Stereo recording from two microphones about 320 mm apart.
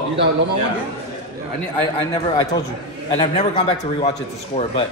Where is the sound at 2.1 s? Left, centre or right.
Centre.